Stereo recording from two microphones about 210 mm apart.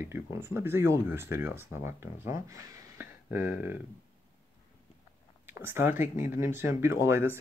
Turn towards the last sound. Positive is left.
turn(degrees=-10)  # may be behind; listen again after turning